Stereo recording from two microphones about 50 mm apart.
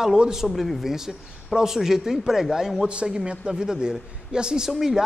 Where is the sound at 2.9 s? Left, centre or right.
Centre.